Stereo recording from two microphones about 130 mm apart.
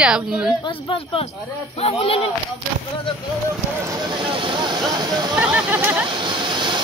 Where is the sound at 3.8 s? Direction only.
35° right (ahead or behind).